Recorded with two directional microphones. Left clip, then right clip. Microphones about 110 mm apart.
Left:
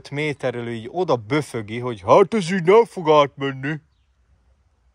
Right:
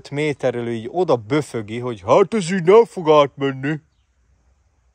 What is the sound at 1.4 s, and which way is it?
Speech, 25° right (ahead or behind).